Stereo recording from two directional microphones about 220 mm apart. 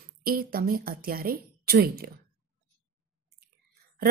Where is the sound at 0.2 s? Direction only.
40° right (ahead or behind).